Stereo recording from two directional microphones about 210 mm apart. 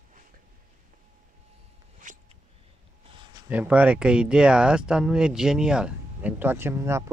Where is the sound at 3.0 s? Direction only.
20° right (ahead or behind).